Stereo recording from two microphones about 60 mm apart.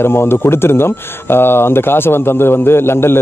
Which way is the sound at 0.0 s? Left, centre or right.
Left.